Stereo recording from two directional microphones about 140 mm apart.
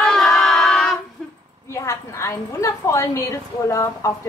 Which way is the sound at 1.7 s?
20° left (ahead or behind).